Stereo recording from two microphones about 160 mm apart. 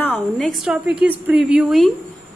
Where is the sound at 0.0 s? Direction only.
10° left (ahead or behind).